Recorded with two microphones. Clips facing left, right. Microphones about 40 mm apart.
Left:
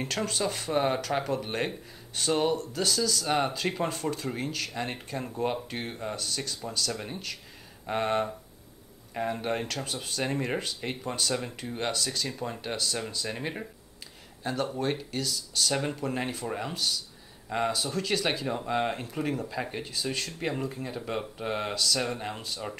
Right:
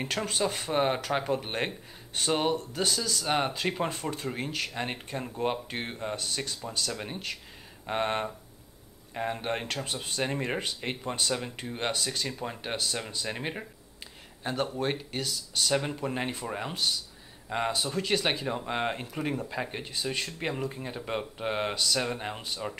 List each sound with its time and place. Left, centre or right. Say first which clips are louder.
0.0 s speech: even; centre